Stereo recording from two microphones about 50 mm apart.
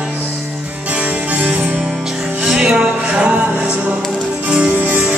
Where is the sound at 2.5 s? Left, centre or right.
Centre.